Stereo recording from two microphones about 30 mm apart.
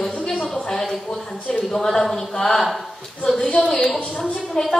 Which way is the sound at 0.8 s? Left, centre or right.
Centre.